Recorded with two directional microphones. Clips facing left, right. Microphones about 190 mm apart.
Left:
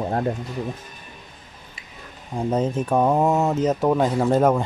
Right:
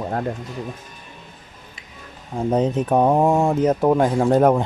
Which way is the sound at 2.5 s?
15° right (ahead or behind).